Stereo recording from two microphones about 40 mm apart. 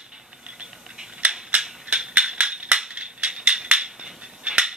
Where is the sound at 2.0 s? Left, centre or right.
Centre.